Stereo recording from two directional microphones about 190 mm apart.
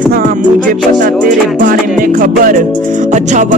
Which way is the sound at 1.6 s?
45° right (ahead or behind).